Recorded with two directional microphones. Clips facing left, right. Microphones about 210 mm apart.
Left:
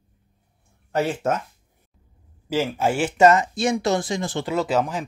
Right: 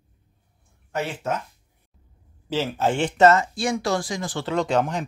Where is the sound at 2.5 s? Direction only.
10° left (ahead or behind).